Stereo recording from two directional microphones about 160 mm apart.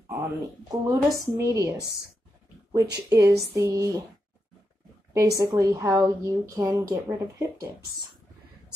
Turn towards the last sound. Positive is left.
turn(degrees=-20)  # may be behind; listen again after turning